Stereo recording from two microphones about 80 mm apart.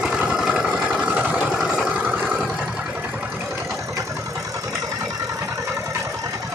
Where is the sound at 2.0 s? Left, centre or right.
Centre.